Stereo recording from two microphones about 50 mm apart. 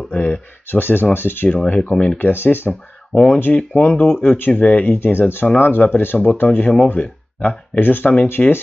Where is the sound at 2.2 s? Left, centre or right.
Left.